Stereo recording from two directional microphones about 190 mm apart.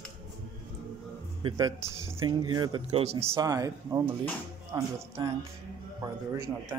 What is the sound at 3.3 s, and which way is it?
Speech, 20° right (ahead or behind).